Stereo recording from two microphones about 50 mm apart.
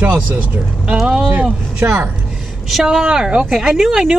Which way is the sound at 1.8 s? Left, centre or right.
Right.